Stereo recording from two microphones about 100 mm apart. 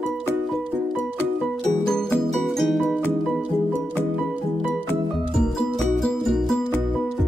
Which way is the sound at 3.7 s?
15° left (ahead or behind).